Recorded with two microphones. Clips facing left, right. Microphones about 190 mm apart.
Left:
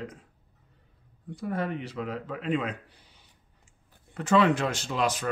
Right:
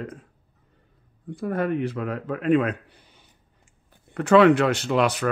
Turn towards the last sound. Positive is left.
turn(degrees=-65)  # may be behind; listen again after turning